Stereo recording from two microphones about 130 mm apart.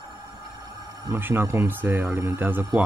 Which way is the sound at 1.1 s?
15° right (ahead or behind).